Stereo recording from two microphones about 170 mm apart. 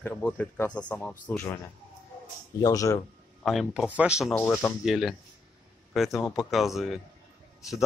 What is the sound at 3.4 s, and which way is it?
Speech, centre (ahead or behind).